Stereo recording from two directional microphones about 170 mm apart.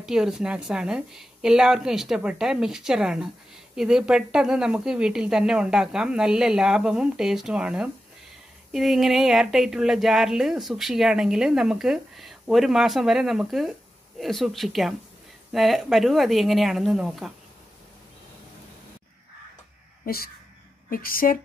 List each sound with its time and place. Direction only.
0.0 s speech: 5° right (ahead or behind)
20.1 s a woman's voice: 60° left (ahead or behind)